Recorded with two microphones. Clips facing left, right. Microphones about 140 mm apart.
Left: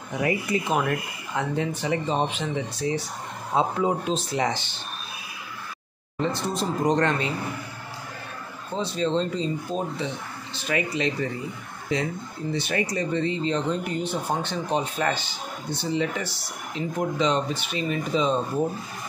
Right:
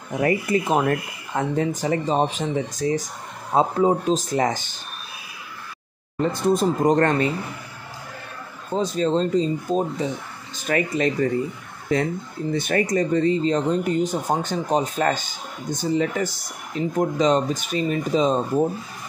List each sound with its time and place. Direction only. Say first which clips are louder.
0.2 s speech: right 4 dB; 45° right (ahead or behind)
6.3 s speech: right 7 dB; 50° right (ahead or behind)
8.7 s speech: right 4 dB; 45° right (ahead or behind)